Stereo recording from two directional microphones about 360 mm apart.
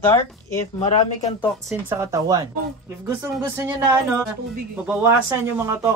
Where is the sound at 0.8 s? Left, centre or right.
Centre.